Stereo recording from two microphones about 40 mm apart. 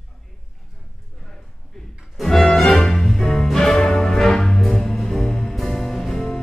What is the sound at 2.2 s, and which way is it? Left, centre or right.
Music, centre.